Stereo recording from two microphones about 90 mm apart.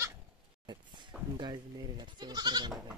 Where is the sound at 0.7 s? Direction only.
55° right (ahead or behind).